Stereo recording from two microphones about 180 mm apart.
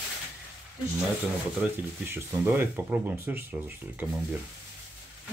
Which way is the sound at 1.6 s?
10° right (ahead or behind).